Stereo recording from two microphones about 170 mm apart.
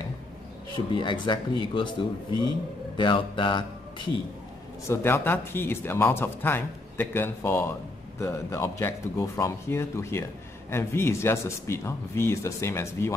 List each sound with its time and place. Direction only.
0.7 s speech: 30° left (ahead or behind)
3.0 s speech: 30° left (ahead or behind)
4.8 s speech: 15° left (ahead or behind)